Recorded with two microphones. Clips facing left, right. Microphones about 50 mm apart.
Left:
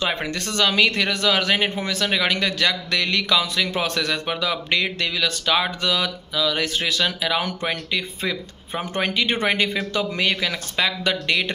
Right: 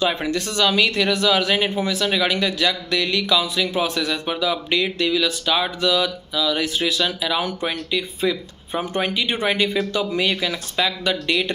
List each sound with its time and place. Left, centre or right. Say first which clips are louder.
0.0 s a man's voice: right 3 dB; left